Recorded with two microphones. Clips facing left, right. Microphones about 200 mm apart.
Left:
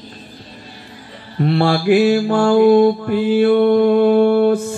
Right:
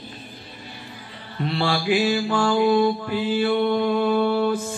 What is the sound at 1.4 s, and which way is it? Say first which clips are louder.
Mantra: left 8 dB; 50° left (ahead or behind).